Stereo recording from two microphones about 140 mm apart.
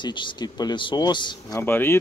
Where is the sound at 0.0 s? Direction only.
35° left (ahead or behind).